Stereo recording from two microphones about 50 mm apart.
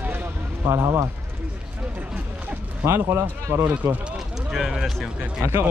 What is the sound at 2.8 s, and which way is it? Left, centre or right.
Speech, right.